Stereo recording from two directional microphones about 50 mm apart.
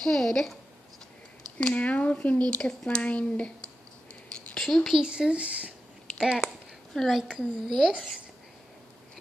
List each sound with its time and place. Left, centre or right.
0.0 s a woman's voice: centre
1.6 s speech: left
2.6 s a woman's voice: centre
3.0 s speech: left
4.6 s a woman's voice: centre
5.0 s speech: centre
6.1 s speech: centre
6.4 s a sound: centre
7.6 s a child's voice: centre